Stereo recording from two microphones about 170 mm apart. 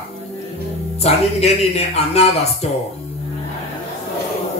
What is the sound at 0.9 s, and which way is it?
Speech, 40° left (ahead or behind).